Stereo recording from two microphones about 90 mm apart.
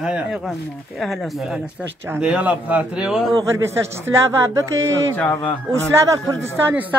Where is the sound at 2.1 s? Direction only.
10° right (ahead or behind).